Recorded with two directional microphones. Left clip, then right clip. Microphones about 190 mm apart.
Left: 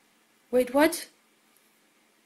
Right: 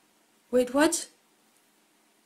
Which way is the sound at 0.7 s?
20° right (ahead or behind).